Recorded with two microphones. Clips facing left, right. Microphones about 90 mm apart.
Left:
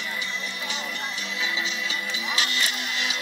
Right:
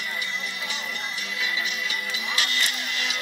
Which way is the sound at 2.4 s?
20° left (ahead or behind).